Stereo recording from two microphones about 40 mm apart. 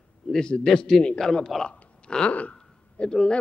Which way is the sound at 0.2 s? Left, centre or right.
Centre.